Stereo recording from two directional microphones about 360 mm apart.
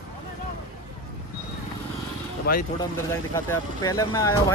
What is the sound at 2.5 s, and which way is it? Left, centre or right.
Speech, left.